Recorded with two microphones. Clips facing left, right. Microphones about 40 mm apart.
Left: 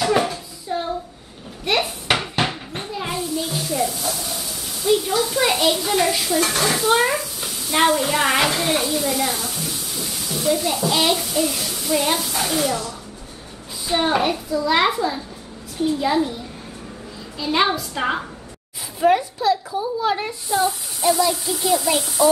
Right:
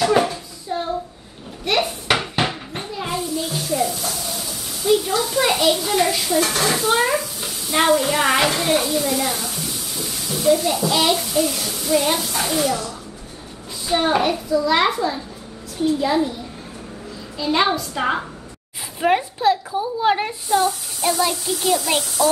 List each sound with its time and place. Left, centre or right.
0.0 s hands: centre
1.6 s a sound: centre
13.8 s a child's voice: centre
17.4 s a child's voice: centre
18.9 s a sound: right
21.2 s a child's voice: right